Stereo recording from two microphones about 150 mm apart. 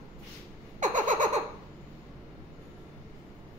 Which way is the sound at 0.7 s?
55° right (ahead or behind).